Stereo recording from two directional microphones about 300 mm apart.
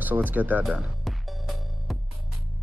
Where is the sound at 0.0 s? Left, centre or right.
Centre.